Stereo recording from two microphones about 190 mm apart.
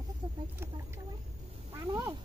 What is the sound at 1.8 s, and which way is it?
Quack, 20° right (ahead or behind).